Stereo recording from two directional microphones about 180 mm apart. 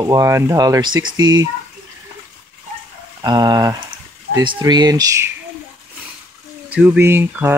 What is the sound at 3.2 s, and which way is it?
Speech, 25° right (ahead or behind).